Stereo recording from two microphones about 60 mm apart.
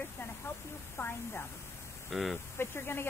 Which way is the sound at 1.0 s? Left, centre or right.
Left.